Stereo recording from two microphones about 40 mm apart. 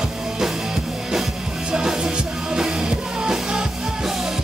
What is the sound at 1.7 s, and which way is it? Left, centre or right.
Music, centre.